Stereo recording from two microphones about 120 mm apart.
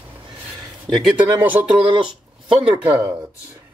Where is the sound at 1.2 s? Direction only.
15° right (ahead or behind).